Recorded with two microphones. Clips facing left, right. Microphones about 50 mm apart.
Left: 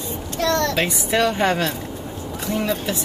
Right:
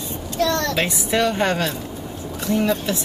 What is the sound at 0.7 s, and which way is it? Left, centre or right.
A woman's voice, centre.